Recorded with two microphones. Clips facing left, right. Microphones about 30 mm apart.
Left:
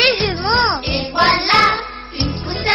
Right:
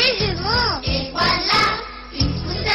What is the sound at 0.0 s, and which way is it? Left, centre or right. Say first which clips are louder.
Music: left 4 dB; centre.